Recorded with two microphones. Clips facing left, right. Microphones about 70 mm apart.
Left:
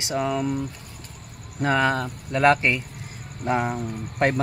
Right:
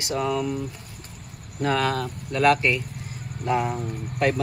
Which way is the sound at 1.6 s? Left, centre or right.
Left.